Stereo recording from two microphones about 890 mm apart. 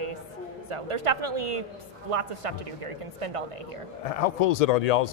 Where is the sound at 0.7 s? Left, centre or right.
Right.